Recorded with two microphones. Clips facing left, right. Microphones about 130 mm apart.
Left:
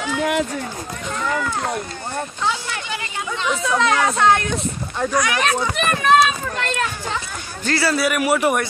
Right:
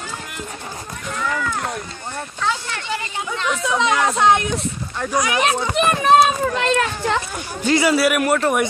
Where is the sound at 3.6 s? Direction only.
20° right (ahead or behind).